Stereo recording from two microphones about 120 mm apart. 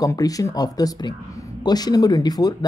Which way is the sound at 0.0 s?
30° left (ahead or behind).